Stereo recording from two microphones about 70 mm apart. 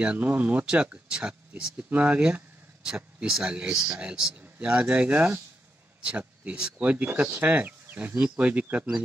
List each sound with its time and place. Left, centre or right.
0.0 s speech: right